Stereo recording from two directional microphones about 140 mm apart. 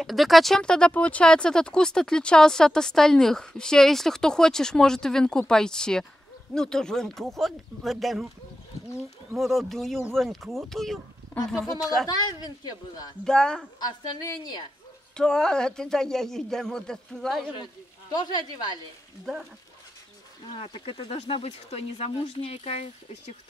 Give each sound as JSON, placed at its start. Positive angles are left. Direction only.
{"t": 0.0, "sound": "speech", "side_deg": 0}
{"t": 9.3, "sound": "speech", "side_deg": 0}
{"t": 12.1, "sound": "a woman's voice", "side_deg": 30}
{"t": 13.2, "sound": "speech", "side_deg": 5}
{"t": 13.7, "sound": "a woman's voice", "side_deg": 30}
{"t": 15.1, "sound": "speech", "side_deg": 5}
{"t": 18.1, "sound": "speech", "side_deg": 30}
{"t": 20.5, "sound": "speech", "side_deg": 40}